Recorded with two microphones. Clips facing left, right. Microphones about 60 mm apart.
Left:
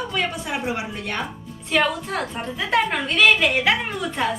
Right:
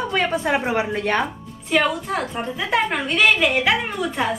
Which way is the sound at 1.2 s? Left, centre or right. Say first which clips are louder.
Right 4 dB; centre.